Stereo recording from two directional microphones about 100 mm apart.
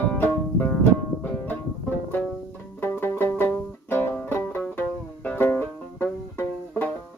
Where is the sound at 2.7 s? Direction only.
20° left (ahead or behind).